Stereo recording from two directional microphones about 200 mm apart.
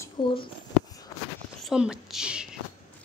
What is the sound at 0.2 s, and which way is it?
Speech, 25° left (ahead or behind).